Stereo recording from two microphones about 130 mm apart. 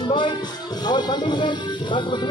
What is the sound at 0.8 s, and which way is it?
Speech, 35° left (ahead or behind).